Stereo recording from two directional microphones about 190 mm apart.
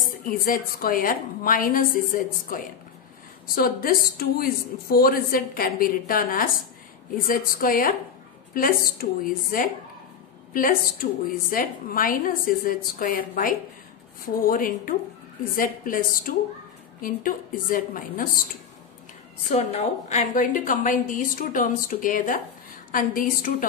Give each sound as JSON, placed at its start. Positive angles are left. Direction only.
{"t": 0.0, "sound": "a woman's voice", "side_deg": 50}
{"t": 19.5, "sound": "a woman's voice", "side_deg": 35}